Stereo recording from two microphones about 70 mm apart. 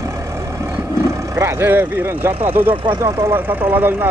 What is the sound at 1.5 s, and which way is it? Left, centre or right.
Speech, right.